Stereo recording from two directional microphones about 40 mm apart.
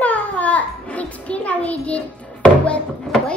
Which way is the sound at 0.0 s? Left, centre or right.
Left.